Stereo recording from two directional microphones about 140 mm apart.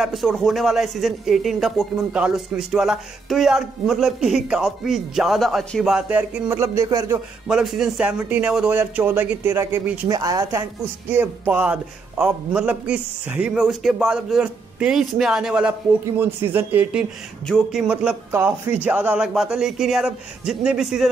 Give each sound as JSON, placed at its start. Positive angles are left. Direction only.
{"t": 0.0, "sound": "speech", "side_deg": 0}
{"t": 7.4, "sound": "a man's voice", "side_deg": -5}
{"t": 11.1, "sound": "a man's voice", "side_deg": -15}